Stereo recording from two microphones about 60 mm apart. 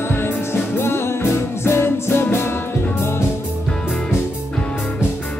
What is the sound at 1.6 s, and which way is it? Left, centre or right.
Music, left.